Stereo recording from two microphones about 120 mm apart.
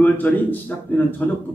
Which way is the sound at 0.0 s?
15° left (ahead or behind).